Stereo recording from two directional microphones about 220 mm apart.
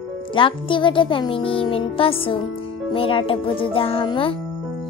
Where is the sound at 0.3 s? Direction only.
25° left (ahead or behind).